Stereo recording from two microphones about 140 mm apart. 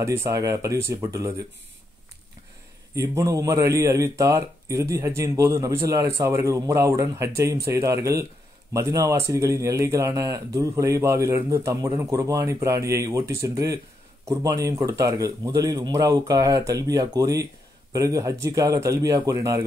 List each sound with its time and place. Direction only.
0.0 s speech: 20° right (ahead or behind)
2.9 s speech: 25° right (ahead or behind)